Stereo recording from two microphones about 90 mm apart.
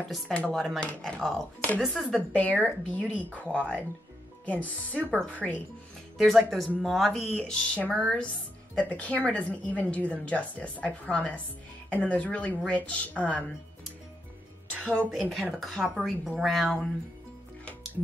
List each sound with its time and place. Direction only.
0.3 s speech: 10° left (ahead or behind)
2.1 s speech: 15° left (ahead or behind)
6.1 s speech: centre (ahead or behind); by 13.5 s 15° left (ahead or behind)
15.0 s speech: centre (ahead or behind)